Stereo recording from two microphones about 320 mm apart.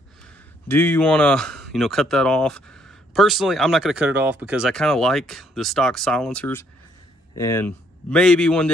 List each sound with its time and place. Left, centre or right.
0.7 s speech: centre